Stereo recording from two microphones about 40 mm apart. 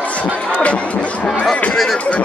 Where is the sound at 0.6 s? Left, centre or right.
Left.